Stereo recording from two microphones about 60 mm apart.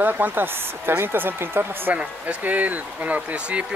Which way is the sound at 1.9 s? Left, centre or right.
Right.